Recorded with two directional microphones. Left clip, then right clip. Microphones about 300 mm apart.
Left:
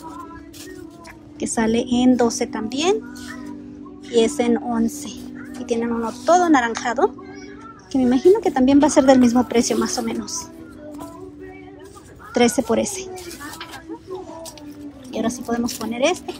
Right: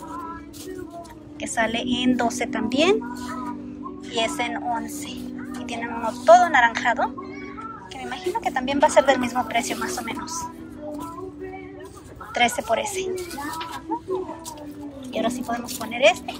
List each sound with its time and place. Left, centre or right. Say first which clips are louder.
1.4 s a woman's voice: left 3 dB; centre
4.1 s a woman's voice: left 7 dB; centre
12.4 s a woman's voice: left 3 dB; centre
13.1 s children playing: right 4 dB; centre
15.1 s a woman's voice: left 2 dB; centre